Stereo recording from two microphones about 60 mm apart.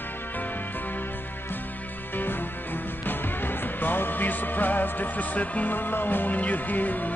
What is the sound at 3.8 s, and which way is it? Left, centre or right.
Music, left.